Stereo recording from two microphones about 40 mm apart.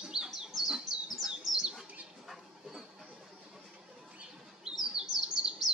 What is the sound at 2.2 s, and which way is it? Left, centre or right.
Dog, centre.